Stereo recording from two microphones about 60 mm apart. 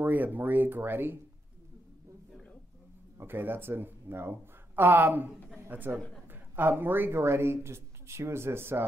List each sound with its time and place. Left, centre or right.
0.0 s speech: right
3.2 s speech: right